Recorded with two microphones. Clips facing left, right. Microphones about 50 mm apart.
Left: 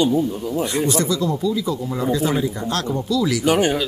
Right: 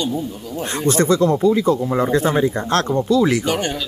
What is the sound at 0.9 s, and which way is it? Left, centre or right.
Speech, right.